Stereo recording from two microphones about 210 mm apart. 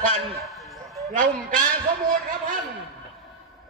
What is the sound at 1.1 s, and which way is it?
Speech, 40° right (ahead or behind).